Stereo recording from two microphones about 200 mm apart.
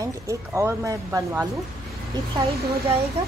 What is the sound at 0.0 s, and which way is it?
Speech, 15° right (ahead or behind).